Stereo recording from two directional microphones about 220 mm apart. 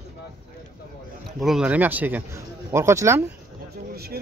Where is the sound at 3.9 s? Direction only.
45° right (ahead or behind).